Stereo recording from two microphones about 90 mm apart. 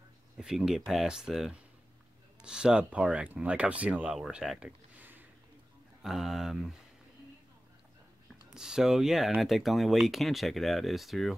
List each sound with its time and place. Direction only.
0.4 s speech: 5° right (ahead or behind)
4.9 s a sound: 20° right (ahead or behind)
6.0 s speech: 5° right (ahead or behind)
8.5 s speech: 5° right (ahead or behind)